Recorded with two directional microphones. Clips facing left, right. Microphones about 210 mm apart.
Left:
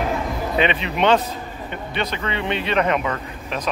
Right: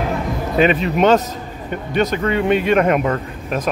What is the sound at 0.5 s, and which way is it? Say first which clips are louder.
Speech: right 7 dB; 45° right (ahead or behind).